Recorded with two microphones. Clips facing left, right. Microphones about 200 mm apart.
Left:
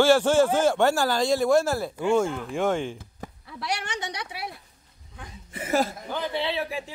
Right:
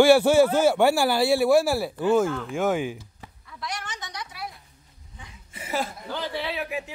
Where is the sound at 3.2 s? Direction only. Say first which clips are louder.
Left 7 dB; 45° left (ahead or behind).